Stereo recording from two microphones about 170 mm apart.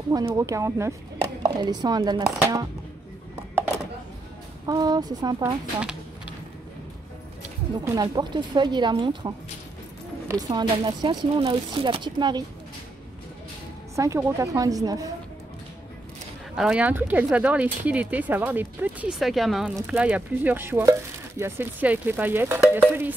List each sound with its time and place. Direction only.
0.1 s speech: 15° right (ahead or behind)
4.6 s speech: 25° right (ahead or behind)
5.8 s a sound: 5° right (ahead or behind)
7.8 s speech: 20° right (ahead or behind)
13.9 s speech: 20° right (ahead or behind)
16.5 s speech: 5° right (ahead or behind)